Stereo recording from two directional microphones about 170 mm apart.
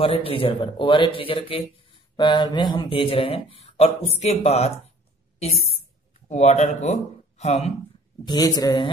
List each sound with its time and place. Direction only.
0.0 s speech: 35° left (ahead or behind)
8.3 s a woman's voice: 20° left (ahead or behind)